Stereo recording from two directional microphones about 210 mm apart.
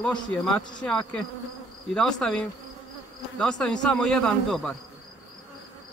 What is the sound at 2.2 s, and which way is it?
Speech, 5° left (ahead or behind).